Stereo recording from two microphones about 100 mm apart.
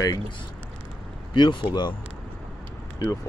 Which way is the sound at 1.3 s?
50° left (ahead or behind).